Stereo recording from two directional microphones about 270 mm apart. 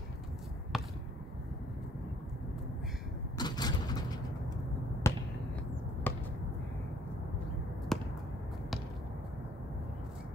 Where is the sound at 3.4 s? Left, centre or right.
Centre.